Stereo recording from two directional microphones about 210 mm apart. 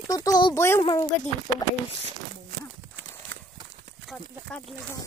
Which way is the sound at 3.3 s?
60° right (ahead or behind).